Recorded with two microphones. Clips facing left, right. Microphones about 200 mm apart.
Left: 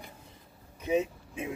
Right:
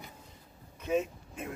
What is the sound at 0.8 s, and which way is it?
Speech, 5° left (ahead or behind).